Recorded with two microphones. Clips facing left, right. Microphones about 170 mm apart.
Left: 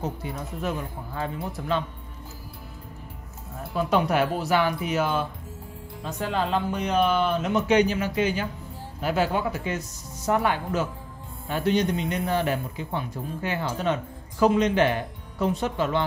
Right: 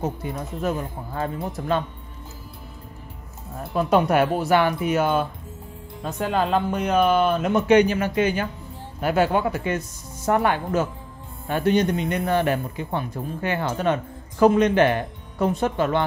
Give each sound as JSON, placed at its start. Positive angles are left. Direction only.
{"t": 0.0, "sound": "speech", "side_deg": -45}
{"t": 3.7, "sound": "speech", "side_deg": -55}